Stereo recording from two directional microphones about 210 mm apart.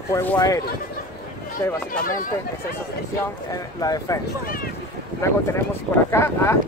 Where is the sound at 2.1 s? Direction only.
40° left (ahead or behind).